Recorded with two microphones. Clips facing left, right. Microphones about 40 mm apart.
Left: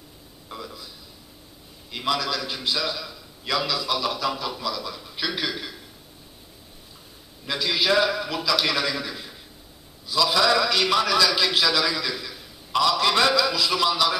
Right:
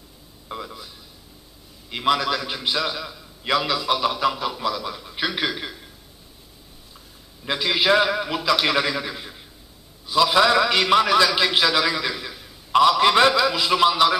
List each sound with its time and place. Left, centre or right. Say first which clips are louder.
0.5 s a man's voice: right 4 dB; right
1.9 s a man's voice: right 5 dB; right
7.4 s a man's voice: right 3 dB; right